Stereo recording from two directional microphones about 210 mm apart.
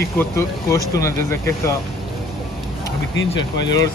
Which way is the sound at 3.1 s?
60° left (ahead or behind).